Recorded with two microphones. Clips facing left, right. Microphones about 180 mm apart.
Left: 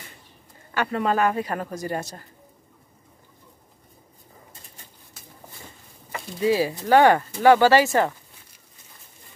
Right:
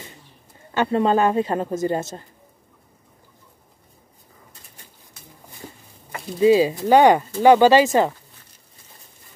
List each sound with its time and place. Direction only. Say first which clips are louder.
0.7 s a woman's voice: right 4 dB; 25° right (ahead or behind)
6.4 s speech: right 6 dB; 20° right (ahead or behind)